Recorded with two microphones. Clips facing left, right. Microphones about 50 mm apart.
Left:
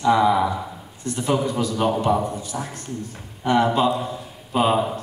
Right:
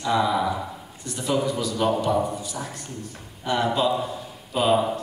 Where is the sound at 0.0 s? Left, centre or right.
Left.